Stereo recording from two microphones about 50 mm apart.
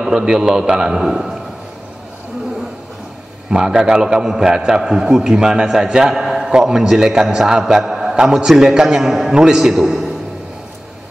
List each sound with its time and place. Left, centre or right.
0.0 s a man's voice: centre
3.4 s a man's voice: centre
6.2 s a sound: centre
6.8 s a man's voice: centre